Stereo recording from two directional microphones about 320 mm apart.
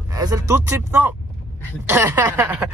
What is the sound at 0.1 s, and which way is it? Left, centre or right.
Speech, centre.